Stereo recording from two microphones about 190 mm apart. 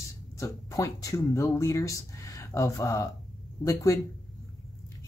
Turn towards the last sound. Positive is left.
turn(degrees=15)  # may be behind; listen again after turning